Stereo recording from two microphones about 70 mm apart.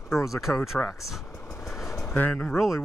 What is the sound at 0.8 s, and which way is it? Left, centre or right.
Speech, centre.